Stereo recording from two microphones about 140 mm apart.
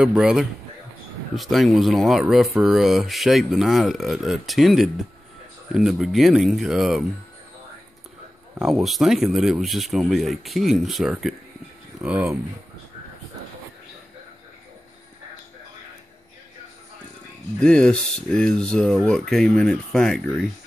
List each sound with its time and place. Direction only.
0.0 s speech: 5° right (ahead or behind)
8.5 s speech: centre (ahead or behind)
17.6 s speech: 5° left (ahead or behind)